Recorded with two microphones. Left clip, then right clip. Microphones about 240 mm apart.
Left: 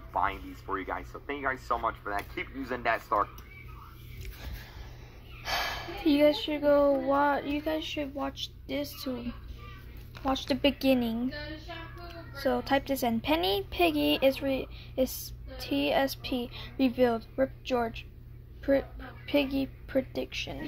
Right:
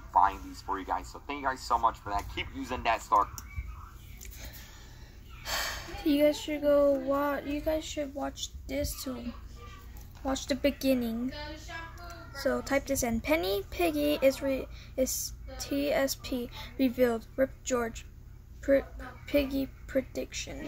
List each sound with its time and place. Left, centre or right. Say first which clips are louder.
0.1 s speech: right 5 dB; centre
5.4 s speech: left 2 dB; centre
10.2 s a woman's voice: left 2 dB; centre
12.4 s a woman's voice: left 2 dB; centre